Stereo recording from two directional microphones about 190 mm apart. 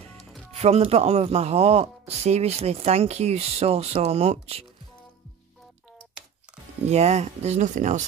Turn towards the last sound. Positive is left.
turn(degrees=-40)  # may be behind; listen again after turning